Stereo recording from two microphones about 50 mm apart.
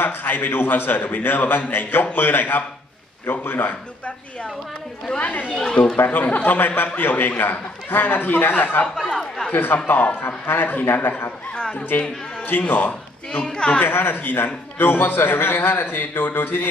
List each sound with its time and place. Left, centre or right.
0.0 s a man's voice: left
6.0 s speech: left
9.1 s speech: centre
9.5 s a man's voice: left
13.3 s speech: centre
13.8 s a man's voice: left